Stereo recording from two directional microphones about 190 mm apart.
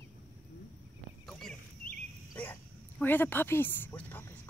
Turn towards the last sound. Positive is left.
turn(degrees=10)  # may be behind; listen again after turning